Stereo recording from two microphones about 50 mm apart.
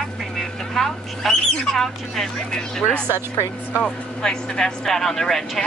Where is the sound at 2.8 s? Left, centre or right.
Left.